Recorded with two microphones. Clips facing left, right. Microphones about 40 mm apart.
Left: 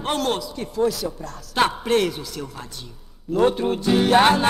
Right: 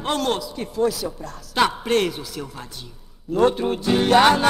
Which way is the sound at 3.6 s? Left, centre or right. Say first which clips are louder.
Left 1 dB; centre.